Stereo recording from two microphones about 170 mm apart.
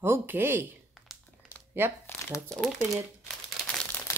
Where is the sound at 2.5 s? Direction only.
Centre (ahead or behind).